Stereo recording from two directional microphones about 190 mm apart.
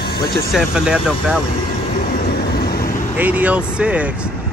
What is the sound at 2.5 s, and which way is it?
Vehicle, 55° left (ahead or behind).